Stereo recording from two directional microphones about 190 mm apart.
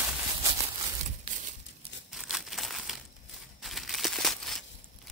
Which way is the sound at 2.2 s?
Centre (ahead or behind).